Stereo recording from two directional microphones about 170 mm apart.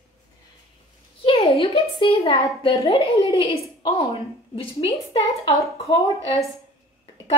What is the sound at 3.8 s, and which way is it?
A woman's voice, 30° left (ahead or behind).